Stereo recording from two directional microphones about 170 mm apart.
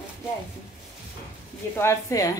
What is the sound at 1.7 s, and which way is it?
Speech, 15° left (ahead or behind).